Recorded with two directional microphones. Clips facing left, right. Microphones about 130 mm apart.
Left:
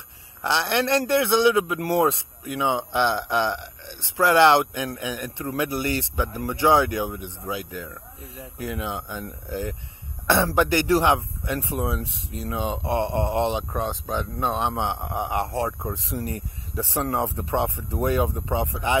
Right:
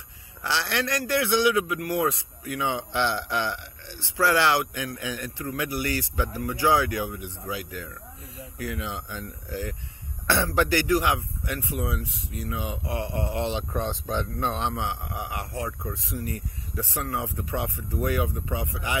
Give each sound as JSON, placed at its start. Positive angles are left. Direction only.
{"t": 0.4, "sound": "speech", "side_deg": 20}
{"t": 13.8, "sound": "speech", "side_deg": 10}